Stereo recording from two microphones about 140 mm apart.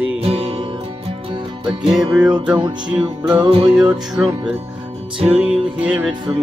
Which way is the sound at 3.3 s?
40° right (ahead or behind).